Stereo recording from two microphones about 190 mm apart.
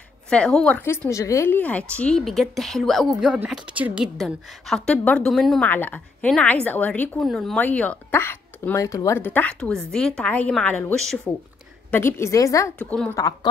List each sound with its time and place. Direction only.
0.3 s a woman's voice: 5° left (ahead or behind); by 13.5 s 20° left (ahead or behind)